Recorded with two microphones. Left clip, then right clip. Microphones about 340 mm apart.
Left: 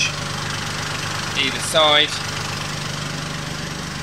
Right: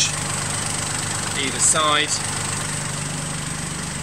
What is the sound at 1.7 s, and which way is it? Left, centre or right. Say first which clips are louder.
Speech: left 5 dB; centre.